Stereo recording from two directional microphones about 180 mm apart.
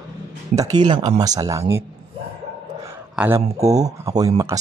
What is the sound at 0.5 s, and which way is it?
Speech, 20° right (ahead or behind).